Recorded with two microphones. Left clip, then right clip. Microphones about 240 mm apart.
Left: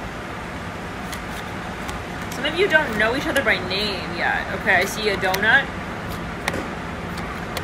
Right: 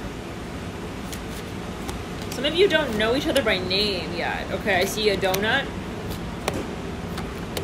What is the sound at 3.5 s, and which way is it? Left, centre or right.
Speech, centre.